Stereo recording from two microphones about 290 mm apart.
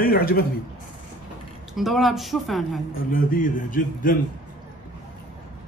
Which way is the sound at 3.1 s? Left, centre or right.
Left.